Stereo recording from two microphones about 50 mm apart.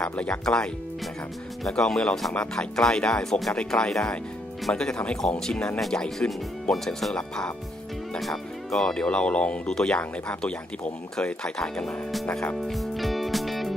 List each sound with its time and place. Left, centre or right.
0.0 s speech: left
1.7 s speech: centre
3.5 s speech: centre
8.2 s speech: centre
12.6 s music: centre